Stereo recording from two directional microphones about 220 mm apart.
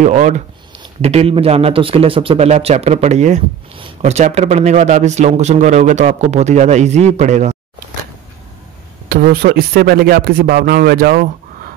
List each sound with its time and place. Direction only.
0.0 s a man's voice: 35° right (ahead or behind)
9.1 s speech: 40° right (ahead or behind)